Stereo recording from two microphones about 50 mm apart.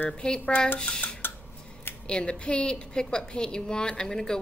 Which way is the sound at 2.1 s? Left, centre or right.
Centre.